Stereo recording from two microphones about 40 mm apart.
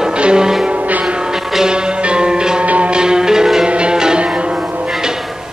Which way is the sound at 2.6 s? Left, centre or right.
Right.